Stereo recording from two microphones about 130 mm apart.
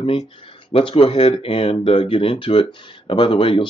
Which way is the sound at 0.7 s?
45° left (ahead or behind).